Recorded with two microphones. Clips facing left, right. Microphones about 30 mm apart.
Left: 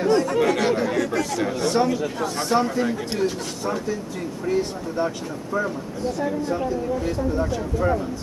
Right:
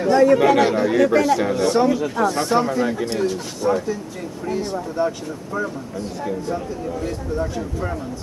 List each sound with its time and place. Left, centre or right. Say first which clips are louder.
0.2 s speech: right 7 dB; centre
0.9 s speech: right 8 dB; centre
1.4 s speech: right 4 dB; centre